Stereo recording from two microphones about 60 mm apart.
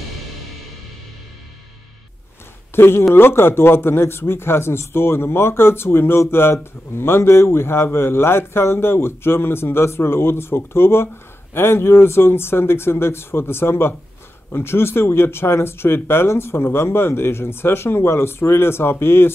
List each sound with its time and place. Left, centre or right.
2.7 s a man's voice: left